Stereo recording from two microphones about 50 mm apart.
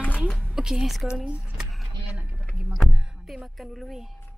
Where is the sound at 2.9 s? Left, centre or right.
Centre.